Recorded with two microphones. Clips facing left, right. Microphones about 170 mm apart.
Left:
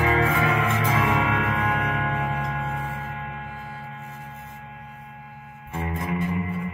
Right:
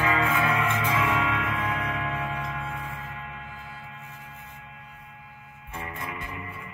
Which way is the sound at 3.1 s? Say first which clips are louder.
Left 5 dB; 55° left (ahead or behind).